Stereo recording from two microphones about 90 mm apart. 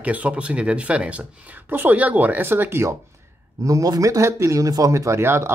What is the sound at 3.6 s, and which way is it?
Speech, 40° right (ahead or behind).